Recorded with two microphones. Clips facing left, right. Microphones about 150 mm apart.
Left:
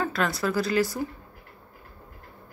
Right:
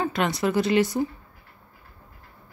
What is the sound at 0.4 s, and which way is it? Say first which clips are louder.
Speech: right 4 dB; 25° right (ahead or behind).